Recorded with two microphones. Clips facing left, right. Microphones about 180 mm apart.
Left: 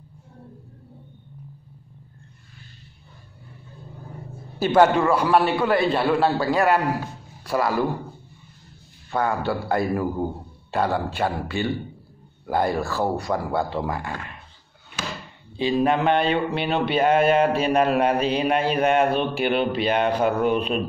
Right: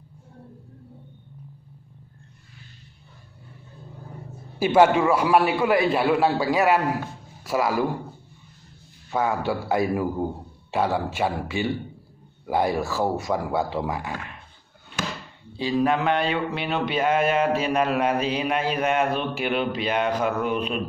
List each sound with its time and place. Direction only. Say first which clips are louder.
4.6 s a man's voice: even; 10° right (ahead or behind)
9.1 s speech: even; 5° right (ahead or behind)
15.5 s speech: left 2 dB; 25° left (ahead or behind)